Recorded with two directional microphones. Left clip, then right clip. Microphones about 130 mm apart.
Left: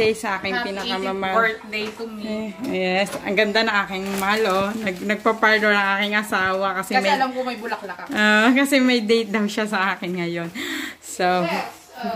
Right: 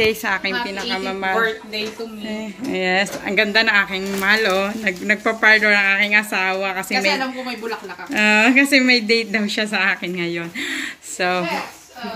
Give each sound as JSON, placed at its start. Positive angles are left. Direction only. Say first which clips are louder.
{"t": 0.0, "sound": "a woman's voice", "louder": "right 2 dB", "side_deg": 10}
{"t": 0.7, "sound": "speech", "louder": "right 1 dB", "side_deg": 25}
{"t": 2.7, "sound": "speech", "louder": "right 3 dB", "side_deg": 10}
{"t": 8.1, "sound": "a woman's voice", "louder": "right 2 dB", "side_deg": 30}